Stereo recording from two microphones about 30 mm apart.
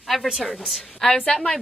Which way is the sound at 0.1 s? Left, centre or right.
Centre.